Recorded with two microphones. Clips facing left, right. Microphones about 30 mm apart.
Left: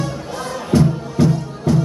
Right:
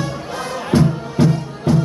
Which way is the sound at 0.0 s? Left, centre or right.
Centre.